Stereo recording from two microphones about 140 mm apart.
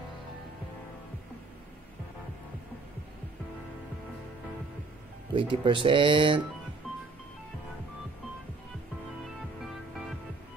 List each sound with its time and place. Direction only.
5.3 s speech: 35° right (ahead or behind)